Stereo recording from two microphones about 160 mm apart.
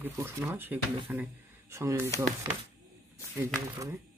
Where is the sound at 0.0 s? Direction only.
15° right (ahead or behind).